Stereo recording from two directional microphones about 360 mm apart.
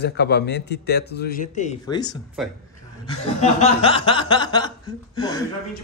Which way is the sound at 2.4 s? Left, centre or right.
Centre.